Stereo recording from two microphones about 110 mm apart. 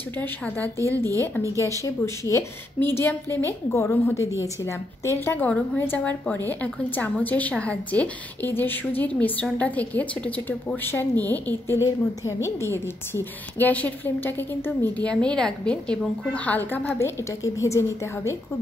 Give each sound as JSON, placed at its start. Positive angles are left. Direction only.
{"t": 0.6, "sound": "a woman's voice", "side_deg": -30}
{"t": 1.6, "sound": "a woman's voice", "side_deg": 25}
{"t": 4.2, "sound": "a woman's voice", "side_deg": -25}
{"t": 4.6, "sound": "a woman's voice", "side_deg": 25}
{"t": 17.2, "sound": "a woman's voice", "side_deg": 30}